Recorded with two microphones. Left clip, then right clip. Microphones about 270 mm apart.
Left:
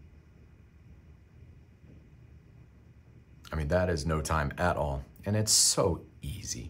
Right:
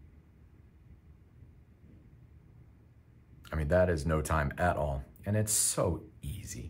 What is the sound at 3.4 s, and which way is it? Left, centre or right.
Speech, centre.